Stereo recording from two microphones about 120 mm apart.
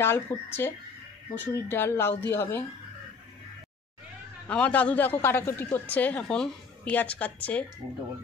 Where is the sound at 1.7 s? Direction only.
20° left (ahead or behind).